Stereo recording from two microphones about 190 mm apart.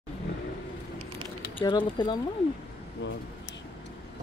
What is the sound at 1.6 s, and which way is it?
Speech, 25° left (ahead or behind).